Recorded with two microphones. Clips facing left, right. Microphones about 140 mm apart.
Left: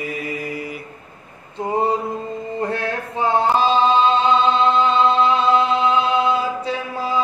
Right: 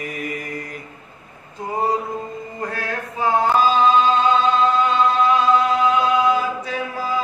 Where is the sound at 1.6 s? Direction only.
25° left (ahead or behind).